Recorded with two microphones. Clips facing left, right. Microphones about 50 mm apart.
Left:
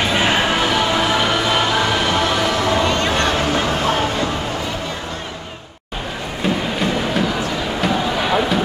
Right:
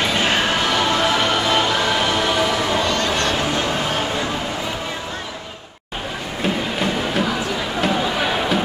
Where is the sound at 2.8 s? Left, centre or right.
Left.